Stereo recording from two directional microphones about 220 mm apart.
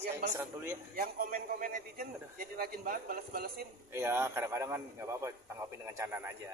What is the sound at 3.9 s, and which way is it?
A man's voice, 10° right (ahead or behind).